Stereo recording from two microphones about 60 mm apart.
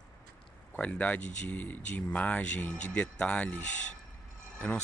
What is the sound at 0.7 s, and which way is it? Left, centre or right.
Speech, left.